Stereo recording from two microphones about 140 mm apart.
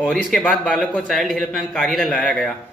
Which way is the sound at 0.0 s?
5° left (ahead or behind).